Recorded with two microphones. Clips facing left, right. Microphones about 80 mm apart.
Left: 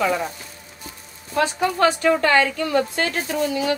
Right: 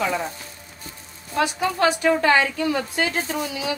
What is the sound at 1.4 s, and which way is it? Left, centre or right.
Speech, left.